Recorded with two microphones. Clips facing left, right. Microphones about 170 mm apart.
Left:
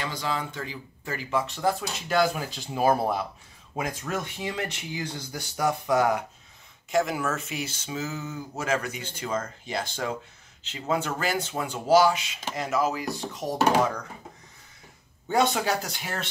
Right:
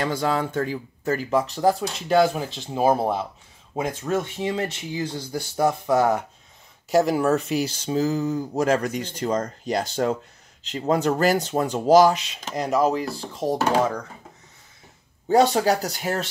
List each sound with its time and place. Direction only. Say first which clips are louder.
0.0 s speech: right 7 dB; 50° right (ahead or behind); by 6.2 s 25° right (ahead or behind)
6.9 s speech: right 7 dB; 35° right (ahead or behind)
15.2 s speech: right 6 dB; 35° right (ahead or behind)